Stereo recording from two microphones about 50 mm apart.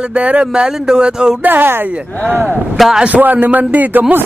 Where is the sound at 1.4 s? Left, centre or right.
Right.